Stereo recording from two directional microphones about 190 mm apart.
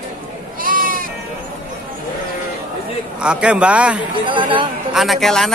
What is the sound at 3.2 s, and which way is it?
Speech, 5° right (ahead or behind).